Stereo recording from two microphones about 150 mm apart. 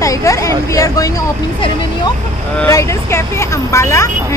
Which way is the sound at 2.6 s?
20° left (ahead or behind).